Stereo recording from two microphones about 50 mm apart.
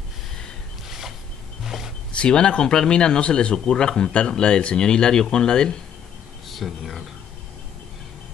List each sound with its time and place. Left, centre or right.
0.8 s a sound: centre
2.1 s speech: centre
6.5 s speech: centre